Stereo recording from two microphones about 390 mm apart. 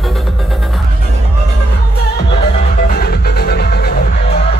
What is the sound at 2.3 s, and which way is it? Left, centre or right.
Music, centre.